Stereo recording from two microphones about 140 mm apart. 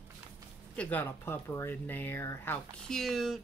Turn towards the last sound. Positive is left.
turn(degrees=0)  # may be behind; listen again after turning